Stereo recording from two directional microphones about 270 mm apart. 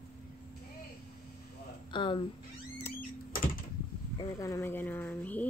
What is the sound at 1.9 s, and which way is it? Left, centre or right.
Speech, centre.